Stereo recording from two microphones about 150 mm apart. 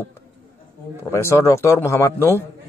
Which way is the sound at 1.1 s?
20° left (ahead or behind).